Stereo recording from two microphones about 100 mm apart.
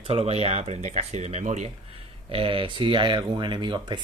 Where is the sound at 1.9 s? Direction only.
70° right (ahead or behind).